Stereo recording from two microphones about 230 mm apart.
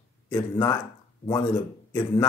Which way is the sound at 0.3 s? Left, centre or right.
Centre.